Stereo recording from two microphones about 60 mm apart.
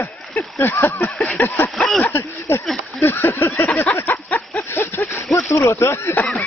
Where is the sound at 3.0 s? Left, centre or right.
Left.